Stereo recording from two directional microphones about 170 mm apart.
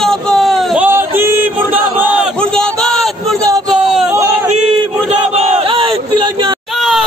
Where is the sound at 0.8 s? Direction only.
15° right (ahead or behind).